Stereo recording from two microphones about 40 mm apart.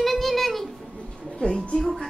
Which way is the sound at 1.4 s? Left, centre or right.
Left.